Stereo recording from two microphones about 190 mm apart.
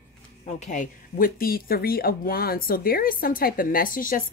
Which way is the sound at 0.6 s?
40° left (ahead or behind).